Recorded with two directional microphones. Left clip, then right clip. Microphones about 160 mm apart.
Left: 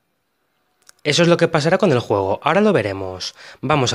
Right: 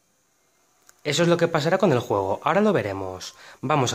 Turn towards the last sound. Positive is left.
turn(degrees=30)  # may be behind; listen again after turning